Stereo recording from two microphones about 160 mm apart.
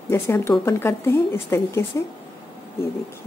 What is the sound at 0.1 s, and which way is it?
A woman's voice, 15° left (ahead or behind).